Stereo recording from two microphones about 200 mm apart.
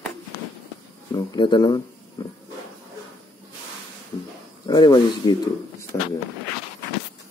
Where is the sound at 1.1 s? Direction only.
20° left (ahead or behind).